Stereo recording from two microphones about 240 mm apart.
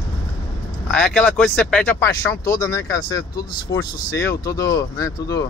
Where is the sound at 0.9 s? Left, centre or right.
Centre.